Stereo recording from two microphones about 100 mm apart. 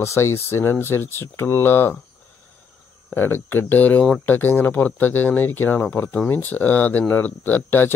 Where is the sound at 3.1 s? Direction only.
20° left (ahead or behind).